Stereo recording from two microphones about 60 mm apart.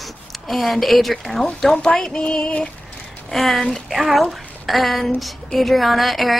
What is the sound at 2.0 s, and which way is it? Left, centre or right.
Music, centre.